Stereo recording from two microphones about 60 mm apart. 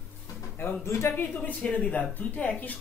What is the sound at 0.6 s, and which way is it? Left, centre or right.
Speech, left.